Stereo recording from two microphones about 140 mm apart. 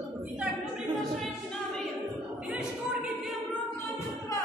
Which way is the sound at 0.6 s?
5° left (ahead or behind).